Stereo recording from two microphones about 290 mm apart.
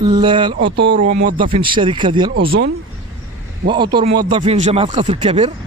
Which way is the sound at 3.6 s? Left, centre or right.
Centre.